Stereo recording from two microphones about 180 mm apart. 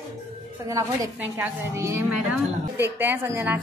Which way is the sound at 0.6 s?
20° right (ahead or behind).